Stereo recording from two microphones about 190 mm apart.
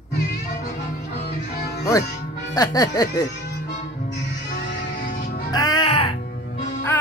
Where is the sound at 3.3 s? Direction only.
60° left (ahead or behind).